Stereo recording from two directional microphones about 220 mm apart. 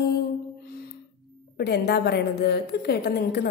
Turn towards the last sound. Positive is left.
turn(degrees=45)  # may be behind; listen again after turning